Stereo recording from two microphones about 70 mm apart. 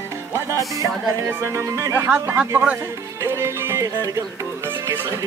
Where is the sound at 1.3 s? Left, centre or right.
Right.